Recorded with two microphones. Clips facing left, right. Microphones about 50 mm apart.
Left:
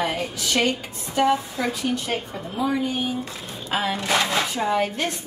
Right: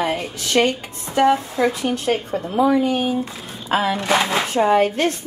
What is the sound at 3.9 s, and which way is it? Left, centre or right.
Speech, centre.